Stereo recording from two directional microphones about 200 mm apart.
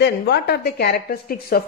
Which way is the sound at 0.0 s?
55° left (ahead or behind).